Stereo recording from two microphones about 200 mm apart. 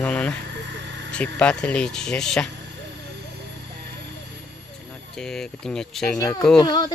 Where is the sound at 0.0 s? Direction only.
5° left (ahead or behind).